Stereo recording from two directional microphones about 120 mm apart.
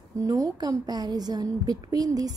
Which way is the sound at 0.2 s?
30° right (ahead or behind).